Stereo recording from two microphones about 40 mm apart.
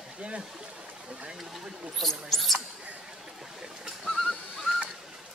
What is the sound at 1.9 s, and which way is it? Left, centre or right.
Speech, centre.